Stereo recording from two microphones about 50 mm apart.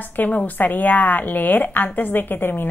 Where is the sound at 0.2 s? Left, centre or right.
Left.